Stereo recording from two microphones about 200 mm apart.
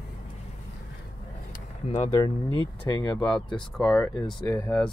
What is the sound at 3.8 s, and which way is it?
Speech, centre (ahead or behind).